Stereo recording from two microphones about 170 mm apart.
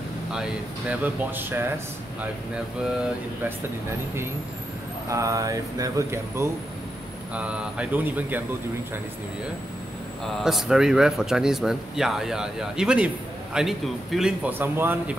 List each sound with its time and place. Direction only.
0.3 s speech: 5° right (ahead or behind)
5.1 s speech: 20° right (ahead or behind)
10.4 s speech: 5° right (ahead or behind)